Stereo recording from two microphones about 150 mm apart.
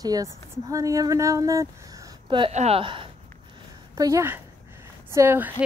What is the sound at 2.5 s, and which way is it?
Speech, 45° right (ahead or behind).